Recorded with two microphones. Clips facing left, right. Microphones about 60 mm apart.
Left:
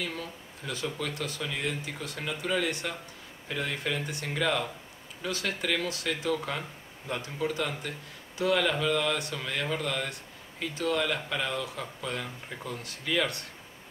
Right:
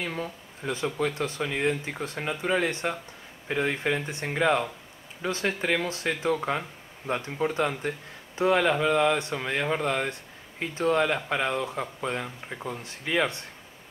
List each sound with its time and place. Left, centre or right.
0.0 s speech: right